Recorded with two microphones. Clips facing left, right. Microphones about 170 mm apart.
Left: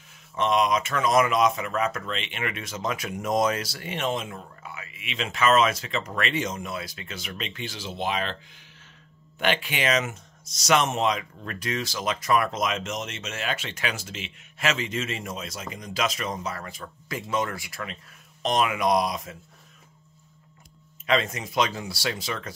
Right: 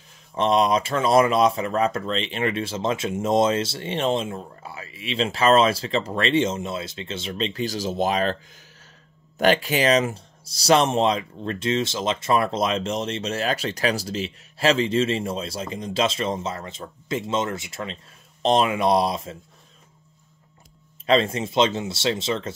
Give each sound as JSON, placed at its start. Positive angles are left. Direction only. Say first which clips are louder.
{"t": 0.3, "sound": "speech", "louder": "right 3 dB", "side_deg": -30}
{"t": 9.4, "sound": "speech", "louder": "right 7 dB", "side_deg": -40}
{"t": 21.0, "sound": "speech", "louder": "right 5 dB", "side_deg": -30}